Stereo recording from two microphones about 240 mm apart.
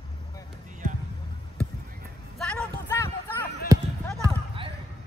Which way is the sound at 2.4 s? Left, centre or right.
Centre.